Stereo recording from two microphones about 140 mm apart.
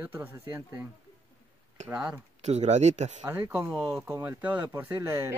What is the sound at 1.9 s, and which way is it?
Speech, 5° right (ahead or behind).